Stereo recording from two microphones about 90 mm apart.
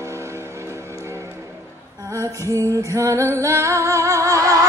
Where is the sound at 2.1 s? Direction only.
40° right (ahead or behind).